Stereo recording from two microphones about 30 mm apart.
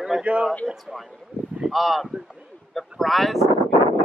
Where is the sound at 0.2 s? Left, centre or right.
Right.